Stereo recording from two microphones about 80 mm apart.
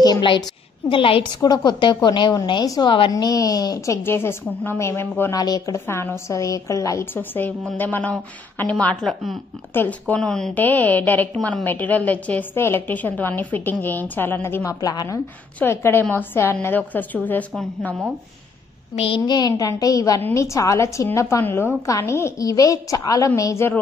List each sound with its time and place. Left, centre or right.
0.0 s a woman's voice: left
0.8 s a woman's voice: left
3.1 s a woman's voice: left
5.3 s a woman's voice: left
5.9 s a woman's voice: left
7.2 s a woman's voice: left
9.0 s speech: centre
9.8 s speech: centre
10.5 s a woman's voice: left
14.6 s a woman's voice: left
15.6 s a woman's voice: left
19.1 s a woman's voice: left
19.5 s a woman's voice: left
22.4 s a woman's voice: left